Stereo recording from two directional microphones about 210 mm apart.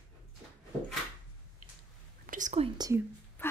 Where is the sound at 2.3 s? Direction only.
35° right (ahead or behind); by 3.0 s 20° right (ahead or behind).